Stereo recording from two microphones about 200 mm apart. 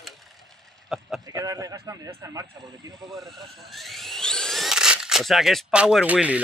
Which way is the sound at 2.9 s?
Centre (ahead or behind).